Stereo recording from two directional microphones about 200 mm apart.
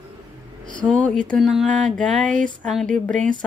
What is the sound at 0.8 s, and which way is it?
Speech, 5° left (ahead or behind).